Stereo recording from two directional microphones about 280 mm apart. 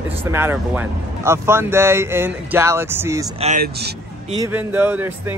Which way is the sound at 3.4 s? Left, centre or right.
Right.